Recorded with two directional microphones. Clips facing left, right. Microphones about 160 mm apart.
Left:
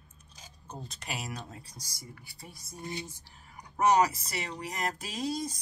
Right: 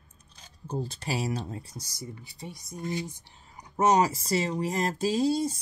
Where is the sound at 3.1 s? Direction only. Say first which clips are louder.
Right 1 dB; 25° right (ahead or behind).